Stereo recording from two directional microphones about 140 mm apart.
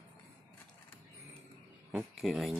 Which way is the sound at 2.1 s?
Centre (ahead or behind).